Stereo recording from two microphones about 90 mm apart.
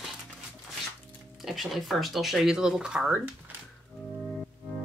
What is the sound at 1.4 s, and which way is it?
Speech, centre (ahead or behind).